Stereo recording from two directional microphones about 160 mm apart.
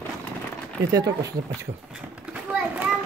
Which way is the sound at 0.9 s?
20° right (ahead or behind).